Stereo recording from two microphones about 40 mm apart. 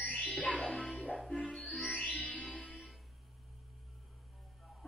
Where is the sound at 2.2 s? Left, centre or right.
Left.